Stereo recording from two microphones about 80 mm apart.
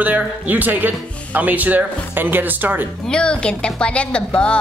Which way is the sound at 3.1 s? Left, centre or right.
Centre.